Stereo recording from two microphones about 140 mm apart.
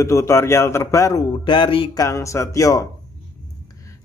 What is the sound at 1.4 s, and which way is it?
Speech, 35° left (ahead or behind).